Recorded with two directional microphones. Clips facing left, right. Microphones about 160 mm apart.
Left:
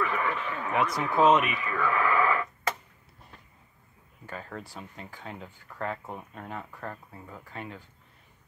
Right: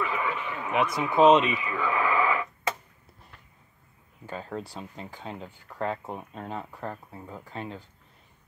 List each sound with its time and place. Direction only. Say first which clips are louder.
0.0 s a sound: even; 10° right (ahead or behind)
1.5 s radio: even; 15° right (ahead or behind)
4.3 s speech: right 4 dB; 20° right (ahead or behind)